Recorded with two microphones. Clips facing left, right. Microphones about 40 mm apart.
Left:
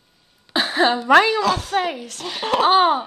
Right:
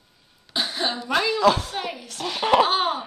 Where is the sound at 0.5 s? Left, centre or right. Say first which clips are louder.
Left 8 dB; left.